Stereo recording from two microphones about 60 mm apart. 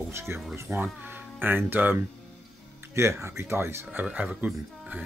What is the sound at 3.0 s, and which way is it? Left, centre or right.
Speech, right.